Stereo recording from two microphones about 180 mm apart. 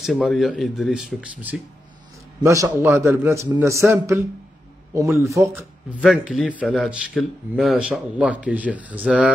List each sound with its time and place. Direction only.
0.0 s speech: centre (ahead or behind)
2.4 s speech: 15° right (ahead or behind)
5.9 s speech: centre (ahead or behind)